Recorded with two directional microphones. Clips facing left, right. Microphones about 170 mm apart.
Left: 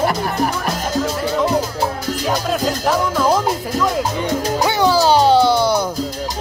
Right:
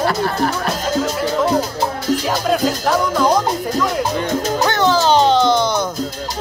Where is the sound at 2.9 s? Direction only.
Centre (ahead or behind).